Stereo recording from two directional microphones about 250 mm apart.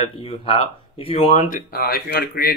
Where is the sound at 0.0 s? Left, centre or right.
Left.